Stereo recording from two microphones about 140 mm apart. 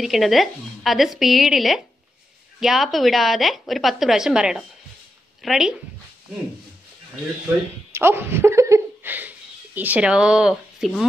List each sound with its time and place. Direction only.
0.0 s a woman's voice: centre (ahead or behind)
7.9 s a sound: 15° right (ahead or behind)
9.8 s speech: 10° right (ahead or behind)